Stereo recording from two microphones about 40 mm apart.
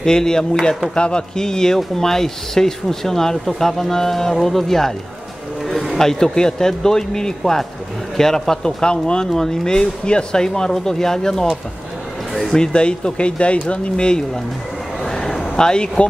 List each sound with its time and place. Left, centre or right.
0.0 s speech: centre
5.9 s speech: centre
12.5 s speech: left
15.0 s a sound: centre